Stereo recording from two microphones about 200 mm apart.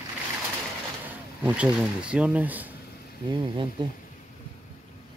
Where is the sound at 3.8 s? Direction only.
25° right (ahead or behind).